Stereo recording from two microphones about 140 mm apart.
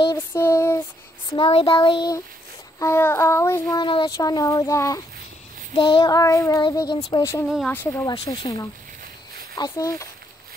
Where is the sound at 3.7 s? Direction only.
35° left (ahead or behind).